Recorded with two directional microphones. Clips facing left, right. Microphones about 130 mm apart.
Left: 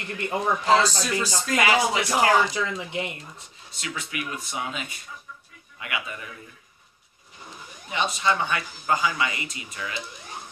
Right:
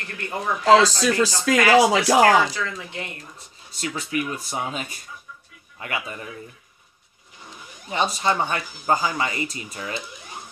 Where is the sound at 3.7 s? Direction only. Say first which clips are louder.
Right 7 dB; 40° right (ahead or behind).